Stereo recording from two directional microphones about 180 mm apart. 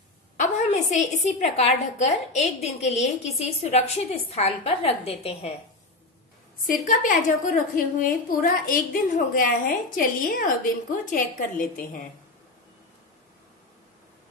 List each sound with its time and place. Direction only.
0.4 s a woman's voice: 40° left (ahead or behind)
6.9 s a woman's voice: 45° left (ahead or behind)